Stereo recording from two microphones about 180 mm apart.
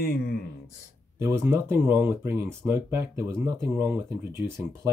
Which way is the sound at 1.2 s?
15° right (ahead or behind).